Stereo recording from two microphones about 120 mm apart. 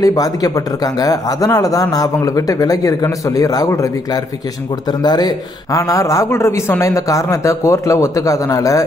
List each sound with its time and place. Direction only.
0.0 s speech: 30° left (ahead or behind)